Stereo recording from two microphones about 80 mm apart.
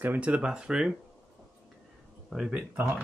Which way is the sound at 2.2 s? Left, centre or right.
Centre.